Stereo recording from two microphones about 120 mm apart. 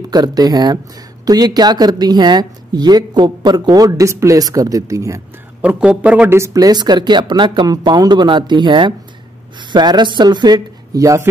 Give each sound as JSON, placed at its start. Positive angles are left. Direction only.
{"t": 0.1, "sound": "speech", "side_deg": -35}
{"t": 5.6, "sound": "a man's voice", "side_deg": -10}
{"t": 6.3, "sound": "speech", "side_deg": -25}